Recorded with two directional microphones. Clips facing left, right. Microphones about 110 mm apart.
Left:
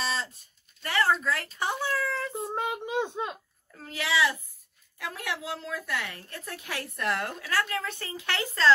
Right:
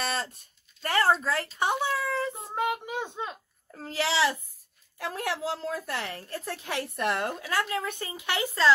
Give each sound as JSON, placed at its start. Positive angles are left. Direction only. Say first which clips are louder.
{"t": 0.0, "sound": "a sound", "louder": "right 1 dB", "side_deg": -55}
{"t": 0.8, "sound": "speech", "louder": "right 2 dB", "side_deg": -40}
{"t": 1.1, "sound": "a child's voice", "louder": "right 1 dB", "side_deg": -25}
{"t": 2.7, "sound": "a child's voice", "louder": "left 2 dB", "side_deg": 20}
{"t": 3.7, "sound": "a child's voice", "louder": "right 2 dB", "side_deg": -35}